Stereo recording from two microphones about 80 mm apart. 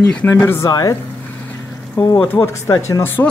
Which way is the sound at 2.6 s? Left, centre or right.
Left.